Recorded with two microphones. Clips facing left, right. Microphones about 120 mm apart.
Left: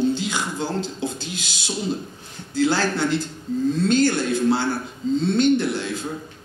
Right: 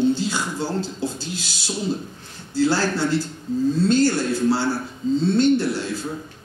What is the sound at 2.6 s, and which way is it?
A man's voice, 20° left (ahead or behind).